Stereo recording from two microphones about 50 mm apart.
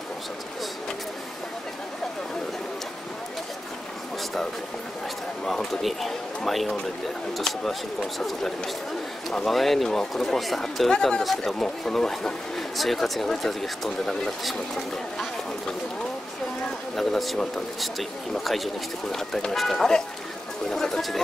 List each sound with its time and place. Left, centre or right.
5.4 s speech: centre
16.9 s speech: centre
18.4 s speech: centre